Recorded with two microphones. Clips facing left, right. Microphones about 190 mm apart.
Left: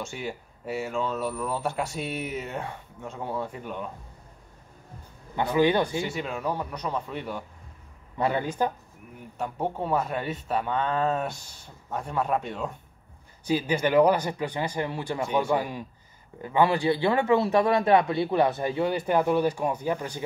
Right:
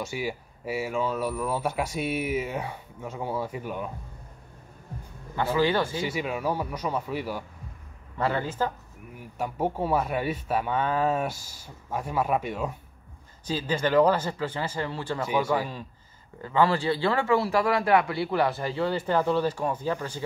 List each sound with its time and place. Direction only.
0.1 s speech: 5° right (ahead or behind)
5.3 s speech: 20° left (ahead or behind)
6.1 s speech: 5° right (ahead or behind)
8.2 s a man's voice: 15° left (ahead or behind)
9.4 s speech: 5° right (ahead or behind)
13.5 s a man's voice: 15° left (ahead or behind)